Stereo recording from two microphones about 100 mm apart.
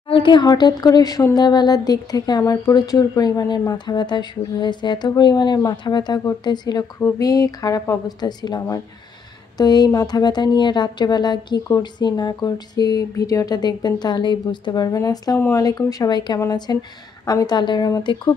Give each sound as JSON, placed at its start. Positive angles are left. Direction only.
{"t": 0.1, "sound": "a woman's voice", "side_deg": 55}